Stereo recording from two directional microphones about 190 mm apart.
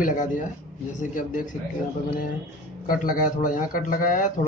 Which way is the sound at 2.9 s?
45° left (ahead or behind).